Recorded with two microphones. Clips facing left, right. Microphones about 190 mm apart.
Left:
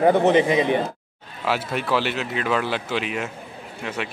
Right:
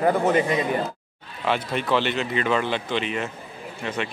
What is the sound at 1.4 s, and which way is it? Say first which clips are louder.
A man's voice: even; 5° left (ahead or behind).